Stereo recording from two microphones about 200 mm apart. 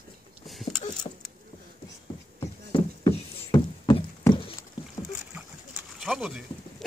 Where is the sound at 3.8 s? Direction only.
25° left (ahead or behind).